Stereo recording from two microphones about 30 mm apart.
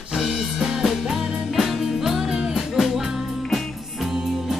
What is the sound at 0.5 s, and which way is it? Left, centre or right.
Music, centre.